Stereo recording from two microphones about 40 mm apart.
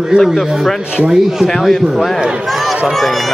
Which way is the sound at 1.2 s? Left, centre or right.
Centre.